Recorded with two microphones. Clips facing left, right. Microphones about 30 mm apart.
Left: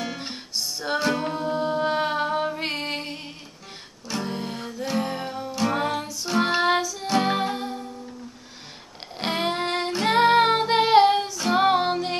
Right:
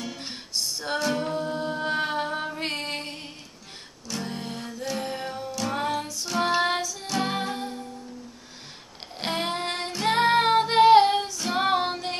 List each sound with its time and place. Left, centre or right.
0.0 s music: left
0.3 s music: centre
0.9 s a capella: centre
4.1 s music: centre
5.5 s music: centre
9.2 s music: centre
10.0 s female singing: centre